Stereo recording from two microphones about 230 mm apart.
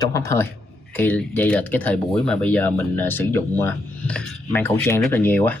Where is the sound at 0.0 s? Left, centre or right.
Centre.